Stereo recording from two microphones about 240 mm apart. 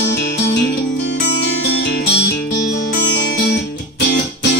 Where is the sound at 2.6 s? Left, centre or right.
Left.